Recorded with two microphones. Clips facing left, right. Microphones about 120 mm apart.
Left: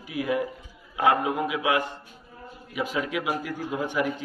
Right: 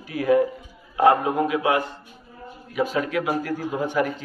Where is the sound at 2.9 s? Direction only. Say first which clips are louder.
Right 1 dB; 10° left (ahead or behind).